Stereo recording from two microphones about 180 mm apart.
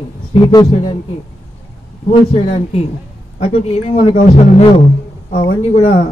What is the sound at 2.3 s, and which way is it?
A man's voice, 35° left (ahead or behind).